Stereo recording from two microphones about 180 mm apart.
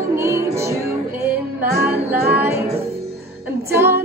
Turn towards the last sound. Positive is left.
turn(degrees=-10)  # may be behind; listen again after turning